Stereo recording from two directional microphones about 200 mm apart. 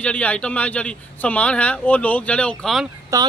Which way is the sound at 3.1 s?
15° right (ahead or behind).